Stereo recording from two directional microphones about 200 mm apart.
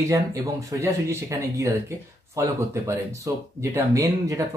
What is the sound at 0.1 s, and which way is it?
Speech, 15° right (ahead or behind).